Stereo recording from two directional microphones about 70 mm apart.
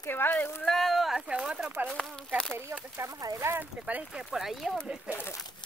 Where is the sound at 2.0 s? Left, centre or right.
Centre.